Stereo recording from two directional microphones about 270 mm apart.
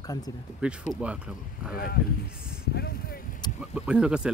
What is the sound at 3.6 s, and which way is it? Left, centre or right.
Speech, centre.